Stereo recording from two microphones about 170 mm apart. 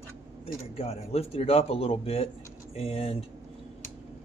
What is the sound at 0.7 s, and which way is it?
A man's voice, 35° left (ahead or behind).